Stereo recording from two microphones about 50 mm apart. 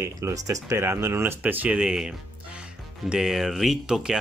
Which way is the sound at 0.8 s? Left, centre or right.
Right.